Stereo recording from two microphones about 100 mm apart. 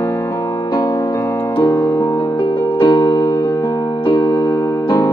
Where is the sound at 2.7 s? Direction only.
50° left (ahead or behind).